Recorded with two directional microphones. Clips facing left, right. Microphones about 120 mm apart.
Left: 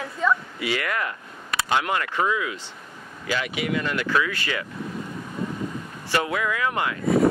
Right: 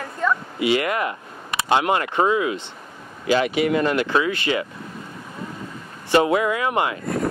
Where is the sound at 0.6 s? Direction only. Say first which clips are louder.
Right 6 dB; 20° right (ahead or behind); by 3.9 s 35° right (ahead or behind).